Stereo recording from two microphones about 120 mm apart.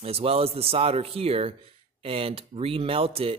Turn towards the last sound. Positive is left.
turn(degrees=-50)  # may be behind; listen again after turning